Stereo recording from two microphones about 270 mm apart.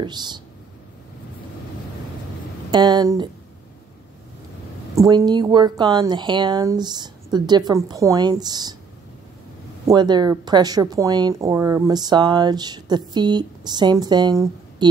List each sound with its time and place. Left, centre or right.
0.0 s speech: centre
2.7 s speech: centre
4.9 s speech: centre
9.8 s speech: centre